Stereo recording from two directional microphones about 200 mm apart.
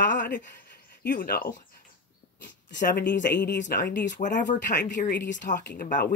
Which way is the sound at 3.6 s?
40° left (ahead or behind).